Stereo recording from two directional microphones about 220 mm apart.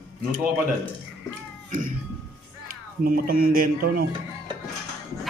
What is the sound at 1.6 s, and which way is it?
Music, 35° right (ahead or behind).